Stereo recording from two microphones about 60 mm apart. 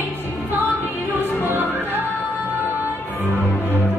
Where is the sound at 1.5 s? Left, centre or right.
Right.